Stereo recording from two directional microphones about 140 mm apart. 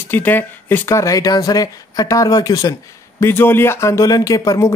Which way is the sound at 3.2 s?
15° left (ahead or behind).